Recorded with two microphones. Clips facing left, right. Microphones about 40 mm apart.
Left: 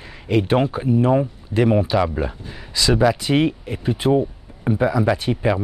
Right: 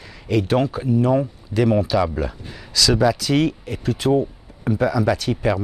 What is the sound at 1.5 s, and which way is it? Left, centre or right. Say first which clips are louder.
Speech: left 1 dB; left.